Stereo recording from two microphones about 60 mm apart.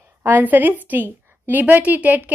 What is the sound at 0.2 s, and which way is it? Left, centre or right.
A woman's voice, right.